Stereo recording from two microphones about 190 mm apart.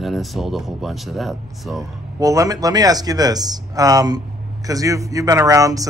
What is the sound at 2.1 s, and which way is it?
Speech, 20° right (ahead or behind).